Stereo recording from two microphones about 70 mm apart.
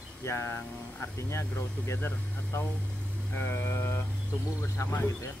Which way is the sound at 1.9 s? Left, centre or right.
Left.